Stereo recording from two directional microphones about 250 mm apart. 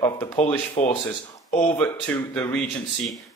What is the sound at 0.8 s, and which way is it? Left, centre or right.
Speech, left.